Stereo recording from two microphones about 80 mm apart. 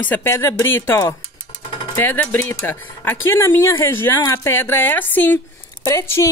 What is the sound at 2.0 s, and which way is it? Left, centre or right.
Speech, left.